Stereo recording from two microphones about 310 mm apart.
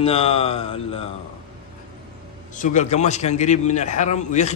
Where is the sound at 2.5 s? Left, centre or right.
Left.